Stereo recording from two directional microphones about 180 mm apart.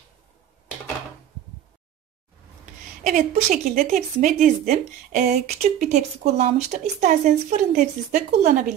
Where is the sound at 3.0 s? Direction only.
45° right (ahead or behind).